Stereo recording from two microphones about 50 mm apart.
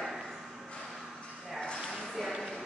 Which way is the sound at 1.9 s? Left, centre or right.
Centre.